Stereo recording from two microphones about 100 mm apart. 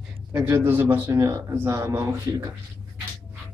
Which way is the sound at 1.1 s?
30° right (ahead or behind).